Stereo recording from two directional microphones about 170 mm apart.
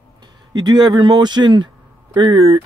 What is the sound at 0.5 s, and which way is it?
Speech, 25° right (ahead or behind).